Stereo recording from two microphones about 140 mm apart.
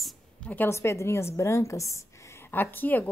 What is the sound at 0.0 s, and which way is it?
A woman's voice, 10° left (ahead or behind).